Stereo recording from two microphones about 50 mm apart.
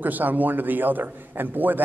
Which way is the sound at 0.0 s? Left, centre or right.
Right.